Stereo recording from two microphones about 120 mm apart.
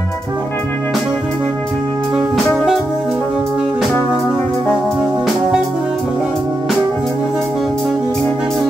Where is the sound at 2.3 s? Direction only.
Centre (ahead or behind).